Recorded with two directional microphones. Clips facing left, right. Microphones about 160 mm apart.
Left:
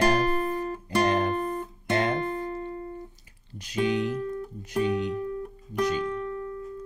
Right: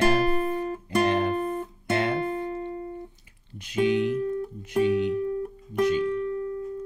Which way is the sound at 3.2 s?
40° left (ahead or behind).